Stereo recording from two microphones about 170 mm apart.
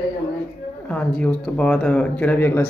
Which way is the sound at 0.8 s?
5° left (ahead or behind).